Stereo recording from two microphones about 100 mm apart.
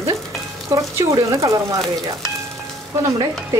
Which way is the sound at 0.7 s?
30° right (ahead or behind).